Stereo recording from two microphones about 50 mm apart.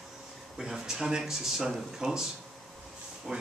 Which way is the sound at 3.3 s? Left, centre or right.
Centre.